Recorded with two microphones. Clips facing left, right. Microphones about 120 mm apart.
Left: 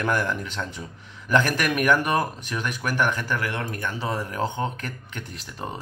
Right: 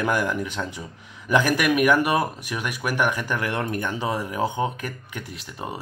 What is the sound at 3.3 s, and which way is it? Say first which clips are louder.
Speech: right 2 dB; 25° right (ahead or behind).